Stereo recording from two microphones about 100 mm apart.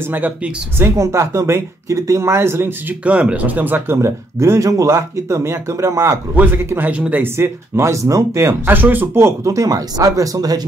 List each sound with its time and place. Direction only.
0.1 s speech: 20° right (ahead or behind)
3.0 s speech: 10° right (ahead or behind); by 6.1 s 30° right (ahead or behind)
6.3 s speech: 20° right (ahead or behind); by 10.6 s 35° right (ahead or behind)